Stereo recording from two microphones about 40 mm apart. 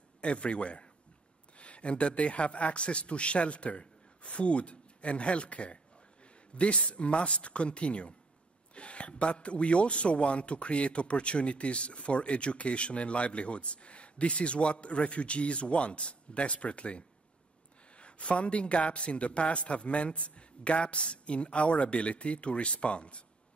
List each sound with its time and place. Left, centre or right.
0.2 s speech: left